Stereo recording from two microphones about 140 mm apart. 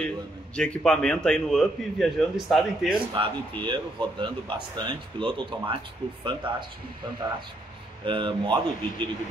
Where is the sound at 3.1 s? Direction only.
35° right (ahead or behind).